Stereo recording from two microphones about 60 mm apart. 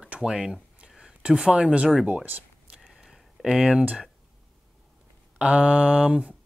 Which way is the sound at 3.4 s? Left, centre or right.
Centre.